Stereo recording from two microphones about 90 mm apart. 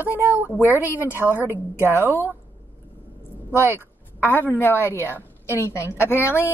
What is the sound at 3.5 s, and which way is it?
Speech, 30° right (ahead or behind).